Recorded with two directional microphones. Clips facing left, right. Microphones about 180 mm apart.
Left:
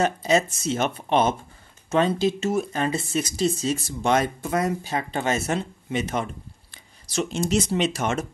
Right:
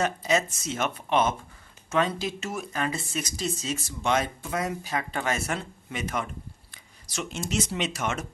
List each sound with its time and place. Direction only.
0.0 s speech: 30° left (ahead or behind)
4.8 s speech: 30° left (ahead or behind)